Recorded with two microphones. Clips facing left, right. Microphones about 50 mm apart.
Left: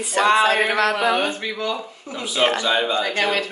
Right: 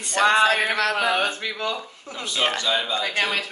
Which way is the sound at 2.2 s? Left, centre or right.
Centre.